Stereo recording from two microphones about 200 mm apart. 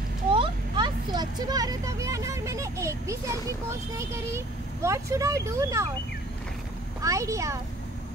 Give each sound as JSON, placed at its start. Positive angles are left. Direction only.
{"t": 0.3, "sound": "vehicle", "side_deg": -25}
{"t": 4.0, "sound": "speech", "side_deg": -15}
{"t": 7.0, "sound": "speech", "side_deg": -15}